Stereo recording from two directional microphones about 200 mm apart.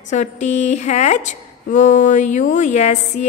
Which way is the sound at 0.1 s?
35° left (ahead or behind).